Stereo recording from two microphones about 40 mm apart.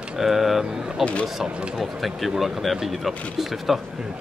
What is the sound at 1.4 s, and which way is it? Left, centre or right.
Speech, centre.